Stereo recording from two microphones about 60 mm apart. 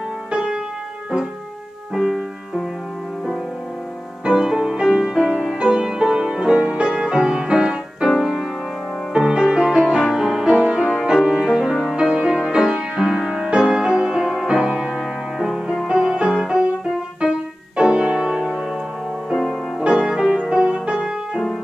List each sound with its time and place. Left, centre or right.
0.3 s music: centre
2.0 s music: centre
4.2 s music: centre
19.8 s music: centre